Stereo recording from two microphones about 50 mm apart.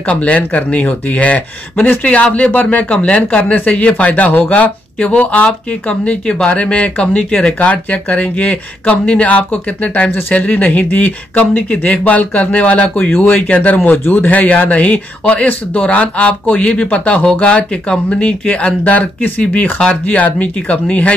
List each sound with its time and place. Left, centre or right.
0.0 s speech: left
13.1 s speech: left
13.4 s speech: left